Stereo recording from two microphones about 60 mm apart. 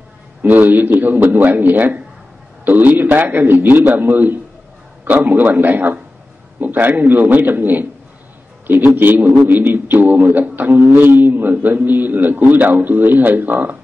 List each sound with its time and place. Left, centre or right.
0.4 s a man's voice: right